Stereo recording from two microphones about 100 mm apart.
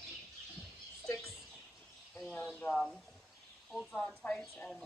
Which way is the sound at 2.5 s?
15° left (ahead or behind).